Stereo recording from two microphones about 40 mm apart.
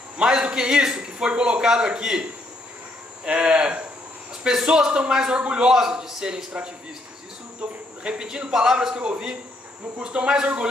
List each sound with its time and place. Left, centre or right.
0.2 s a man's voice: centre
3.3 s a man's voice: right
5.4 s a man's voice: right
5.7 s a man's voice: centre